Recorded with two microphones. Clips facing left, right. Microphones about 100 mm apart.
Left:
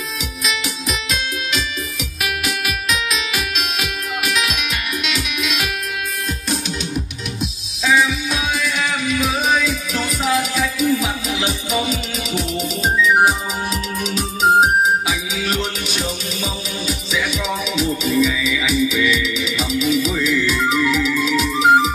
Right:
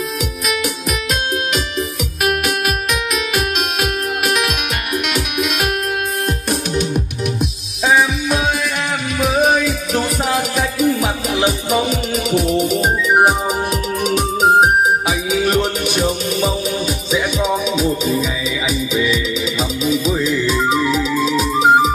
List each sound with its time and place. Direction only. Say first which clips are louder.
2.2 s music: right 6 dB; 50° right (ahead or behind)
7.8 s music: right 2 dB; 55° right (ahead or behind); by 21.9 s 35° right (ahead or behind)